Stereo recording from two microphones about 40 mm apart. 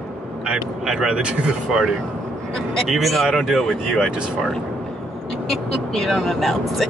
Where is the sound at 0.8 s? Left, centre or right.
Centre.